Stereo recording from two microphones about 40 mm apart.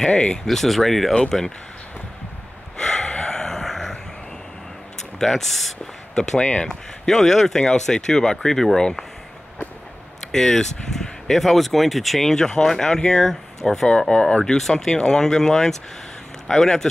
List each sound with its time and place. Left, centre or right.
0.5 s speech: centre
2.8 s gasp: centre
5.2 s speech: centre
6.4 s speech: left
7.1 s speech: centre
10.3 s speech: centre